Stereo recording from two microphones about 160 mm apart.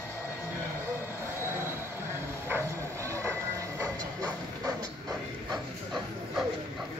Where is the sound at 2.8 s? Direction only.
20° right (ahead or behind).